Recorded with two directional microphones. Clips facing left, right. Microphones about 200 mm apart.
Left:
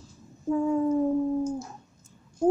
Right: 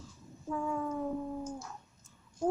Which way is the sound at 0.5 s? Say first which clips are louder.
Left 11 dB; 30° left (ahead or behind).